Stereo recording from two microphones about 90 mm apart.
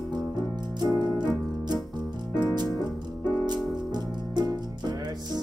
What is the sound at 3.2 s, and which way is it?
Music, 55° right (ahead or behind).